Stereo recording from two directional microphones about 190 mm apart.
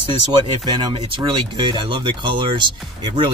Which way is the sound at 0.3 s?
25° right (ahead or behind).